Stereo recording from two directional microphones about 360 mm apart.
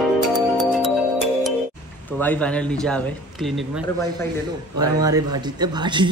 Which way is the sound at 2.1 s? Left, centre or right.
Centre.